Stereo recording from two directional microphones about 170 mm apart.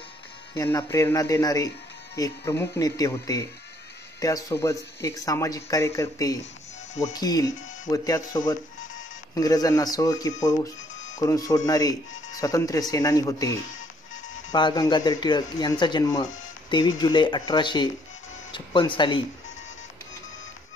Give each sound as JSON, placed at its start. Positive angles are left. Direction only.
{"t": 0.7, "sound": "speech", "side_deg": 15}
{"t": 14.5, "sound": "speech", "side_deg": 25}